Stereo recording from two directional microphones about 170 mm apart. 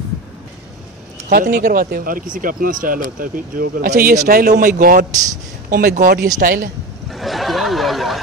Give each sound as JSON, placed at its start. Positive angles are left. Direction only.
{"t": 1.3, "sound": "speech", "side_deg": -65}
{"t": 7.1, "sound": "snicker", "side_deg": 0}